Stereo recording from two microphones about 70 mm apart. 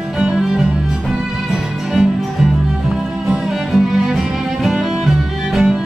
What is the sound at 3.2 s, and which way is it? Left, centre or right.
Music, centre.